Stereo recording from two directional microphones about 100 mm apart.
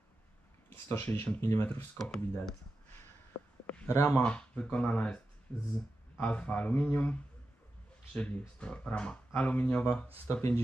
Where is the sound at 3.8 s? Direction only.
30° left (ahead or behind).